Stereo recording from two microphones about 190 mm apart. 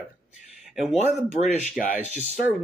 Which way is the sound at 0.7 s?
Centre (ahead or behind).